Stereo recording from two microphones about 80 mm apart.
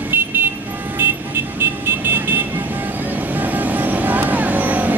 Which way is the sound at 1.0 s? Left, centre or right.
Right.